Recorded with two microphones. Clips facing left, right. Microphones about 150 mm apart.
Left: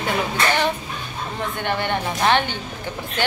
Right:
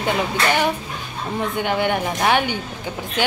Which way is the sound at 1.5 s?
10° right (ahead or behind).